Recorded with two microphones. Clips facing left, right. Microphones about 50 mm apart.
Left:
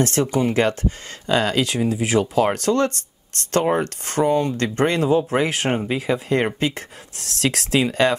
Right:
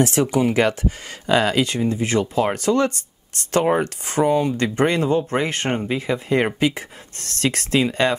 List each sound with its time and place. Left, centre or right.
0.0 s speech: centre
1.6 s speech: centre